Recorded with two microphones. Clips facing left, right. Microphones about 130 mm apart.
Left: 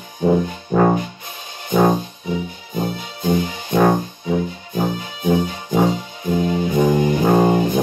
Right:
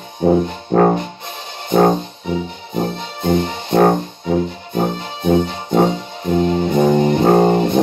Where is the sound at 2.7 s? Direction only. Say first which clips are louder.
Right 3 dB; 25° right (ahead or behind).